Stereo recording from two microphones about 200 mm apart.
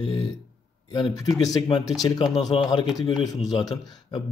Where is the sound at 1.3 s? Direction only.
20° left (ahead or behind).